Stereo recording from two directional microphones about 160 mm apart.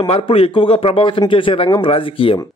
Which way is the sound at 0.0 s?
35° left (ahead or behind).